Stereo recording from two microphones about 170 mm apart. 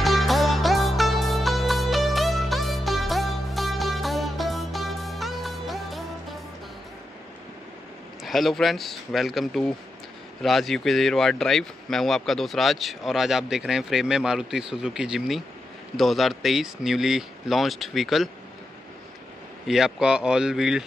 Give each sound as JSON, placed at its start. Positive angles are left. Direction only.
{"t": 0.0, "sound": "music", "side_deg": 0}
{"t": 8.2, "sound": "speech", "side_deg": 0}
{"t": 19.7, "sound": "speech", "side_deg": -5}